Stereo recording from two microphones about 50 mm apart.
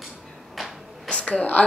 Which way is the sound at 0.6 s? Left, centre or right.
Centre.